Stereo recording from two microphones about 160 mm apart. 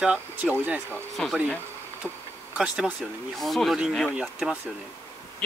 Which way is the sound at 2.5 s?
5° right (ahead or behind).